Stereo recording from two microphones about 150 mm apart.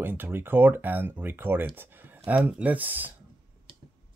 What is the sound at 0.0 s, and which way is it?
Speech, 15° right (ahead or behind).